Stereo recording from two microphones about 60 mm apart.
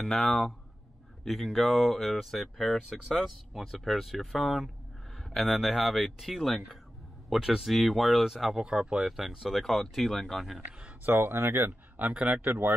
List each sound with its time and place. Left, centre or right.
0.0 s speech: centre
9.0 s speech: centre
11.1 s speech: right
12.0 s speech: right